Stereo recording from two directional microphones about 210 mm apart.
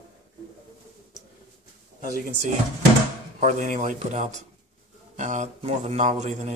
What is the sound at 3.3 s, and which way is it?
Speech, 35° right (ahead or behind).